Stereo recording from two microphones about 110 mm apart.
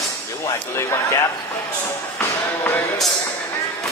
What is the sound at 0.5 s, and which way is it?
Speech, 25° left (ahead or behind).